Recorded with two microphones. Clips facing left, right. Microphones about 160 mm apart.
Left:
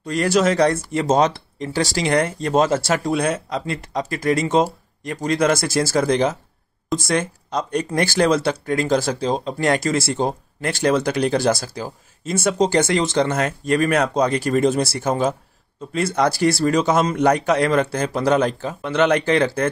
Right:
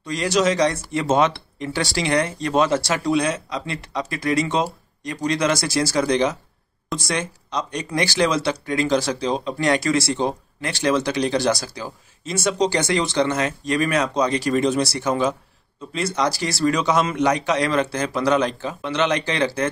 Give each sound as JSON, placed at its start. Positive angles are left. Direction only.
{"t": 0.0, "sound": "speech", "side_deg": 55}